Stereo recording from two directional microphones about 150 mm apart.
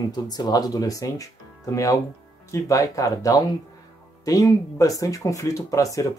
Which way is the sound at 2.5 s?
20° left (ahead or behind).